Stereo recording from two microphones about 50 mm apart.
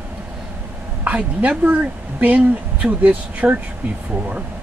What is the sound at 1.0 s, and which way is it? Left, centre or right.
Speech, right.